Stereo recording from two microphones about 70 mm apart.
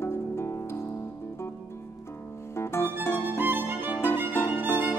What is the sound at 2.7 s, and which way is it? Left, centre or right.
Music, left.